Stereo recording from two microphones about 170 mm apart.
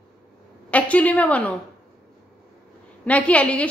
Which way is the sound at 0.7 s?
10° left (ahead or behind).